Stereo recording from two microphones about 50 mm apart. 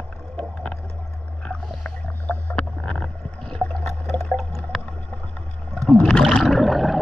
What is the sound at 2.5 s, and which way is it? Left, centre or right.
Boat, centre.